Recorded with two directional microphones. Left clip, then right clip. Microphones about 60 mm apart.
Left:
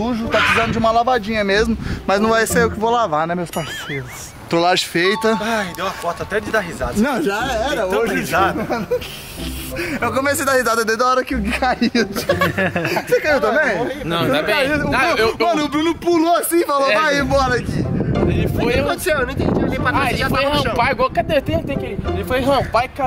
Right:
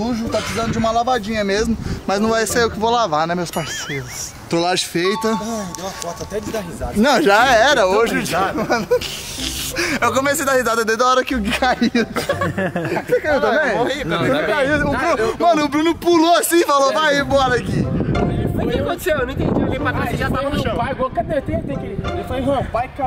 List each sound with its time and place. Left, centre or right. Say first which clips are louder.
0.3 s speech: left 9 dB; left; by 3.2 s centre
4.5 s speech: left 3 dB; centre
7.0 s speech: right 8 dB; right
8.5 s speech: right 3 dB; right
10.1 s speech: even; centre
12.3 s speech: left 3 dB; centre
13.4 s speech: even; centre
15.4 s speech: right 2 dB; right; by 17.8 s centre
18.6 s speech: left 3 dB; centre